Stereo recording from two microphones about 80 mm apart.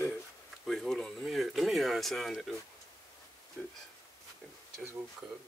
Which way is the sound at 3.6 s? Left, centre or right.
Centre.